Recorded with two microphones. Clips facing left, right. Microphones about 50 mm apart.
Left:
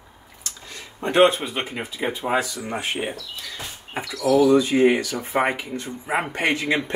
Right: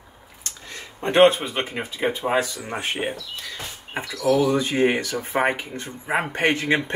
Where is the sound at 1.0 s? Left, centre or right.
Right.